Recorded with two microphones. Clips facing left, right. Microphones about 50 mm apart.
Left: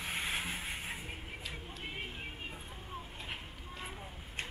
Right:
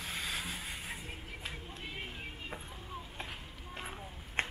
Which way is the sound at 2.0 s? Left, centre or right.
Centre.